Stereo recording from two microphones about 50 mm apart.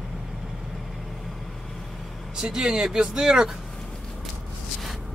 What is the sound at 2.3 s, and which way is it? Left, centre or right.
Speech, centre.